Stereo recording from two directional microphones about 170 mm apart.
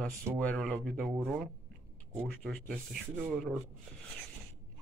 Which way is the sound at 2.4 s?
5° left (ahead or behind).